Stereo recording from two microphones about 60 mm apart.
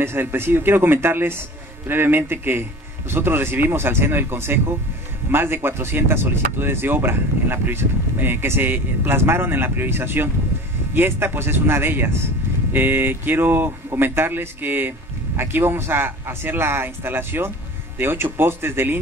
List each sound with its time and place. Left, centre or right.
0.0 s speech: right